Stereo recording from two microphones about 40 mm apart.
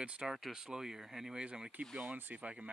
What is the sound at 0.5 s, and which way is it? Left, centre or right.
Speech, centre.